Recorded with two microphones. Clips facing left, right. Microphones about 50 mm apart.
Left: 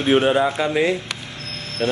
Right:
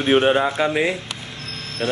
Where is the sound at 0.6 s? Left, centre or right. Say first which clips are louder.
Right 1 dB; right.